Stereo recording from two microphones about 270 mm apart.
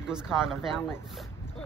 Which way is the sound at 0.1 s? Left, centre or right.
Centre.